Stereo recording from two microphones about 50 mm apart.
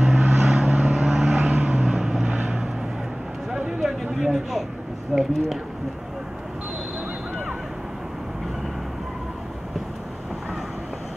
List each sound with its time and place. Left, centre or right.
0.0 s vehicle: centre
1.4 s vehicle: right
3.8 s a sound: centre
5.1 s a woman's voice: centre